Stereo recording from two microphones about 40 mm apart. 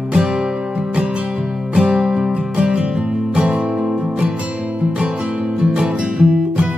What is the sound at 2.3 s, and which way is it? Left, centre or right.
Music, right.